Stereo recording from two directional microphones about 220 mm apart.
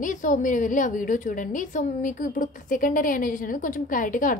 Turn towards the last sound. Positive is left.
turn(degrees=35)  # may be behind; listen again after turning